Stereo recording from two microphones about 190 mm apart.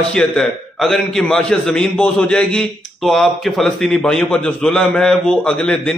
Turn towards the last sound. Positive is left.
turn(degrees=5)  # may be behind; listen again after turning